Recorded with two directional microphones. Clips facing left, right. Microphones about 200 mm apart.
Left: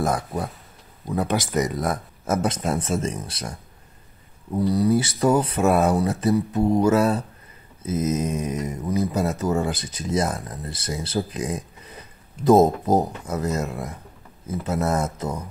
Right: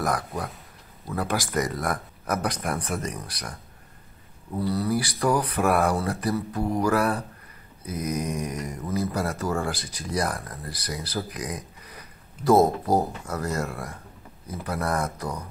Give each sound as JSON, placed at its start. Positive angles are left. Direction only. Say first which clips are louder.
{"t": 0.0, "sound": "speech", "louder": "left 3 dB", "side_deg": 25}
{"t": 4.6, "sound": "speech", "louder": "left 6 dB", "side_deg": 20}